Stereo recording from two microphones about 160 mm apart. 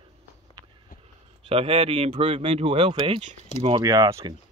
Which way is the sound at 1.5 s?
40° right (ahead or behind).